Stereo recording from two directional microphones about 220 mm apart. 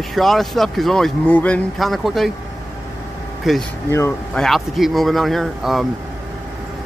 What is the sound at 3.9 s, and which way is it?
Speech, 10° left (ahead or behind).